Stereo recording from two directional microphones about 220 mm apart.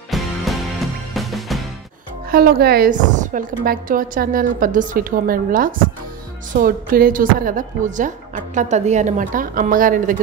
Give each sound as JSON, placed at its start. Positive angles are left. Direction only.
{"t": 0.1, "sound": "music", "side_deg": 0}
{"t": 2.3, "sound": "speech", "side_deg": -45}